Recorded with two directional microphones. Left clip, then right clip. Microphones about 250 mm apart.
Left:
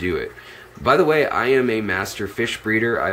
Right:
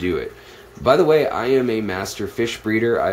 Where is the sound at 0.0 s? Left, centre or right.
Centre.